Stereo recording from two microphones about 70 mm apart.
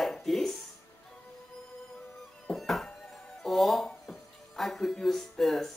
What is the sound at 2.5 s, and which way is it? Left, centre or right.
Music, centre.